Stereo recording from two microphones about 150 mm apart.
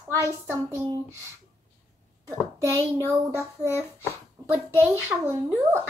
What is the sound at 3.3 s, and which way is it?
Speech, 15° left (ahead or behind).